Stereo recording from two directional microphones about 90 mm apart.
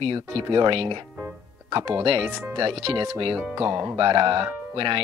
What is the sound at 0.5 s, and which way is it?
Speech, 65° right (ahead or behind).